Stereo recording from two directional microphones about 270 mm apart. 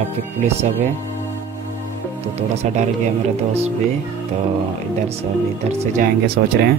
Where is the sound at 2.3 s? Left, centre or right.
Right.